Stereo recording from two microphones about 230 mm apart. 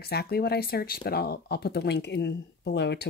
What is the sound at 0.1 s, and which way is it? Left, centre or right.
Speech, left.